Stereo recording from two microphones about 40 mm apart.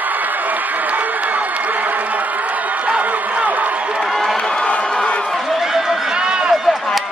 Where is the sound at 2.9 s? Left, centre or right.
Right.